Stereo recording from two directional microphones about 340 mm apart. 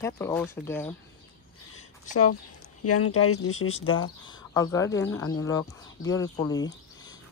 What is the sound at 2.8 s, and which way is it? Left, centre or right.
Speech, left.